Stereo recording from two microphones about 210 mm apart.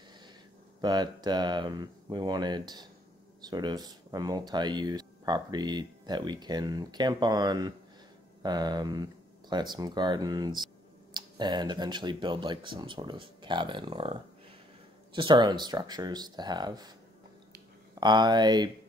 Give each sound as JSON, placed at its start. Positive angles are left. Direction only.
{"t": 0.7, "sound": "speech", "side_deg": -20}
{"t": 15.1, "sound": "speech", "side_deg": -20}
{"t": 18.0, "sound": "speech", "side_deg": -20}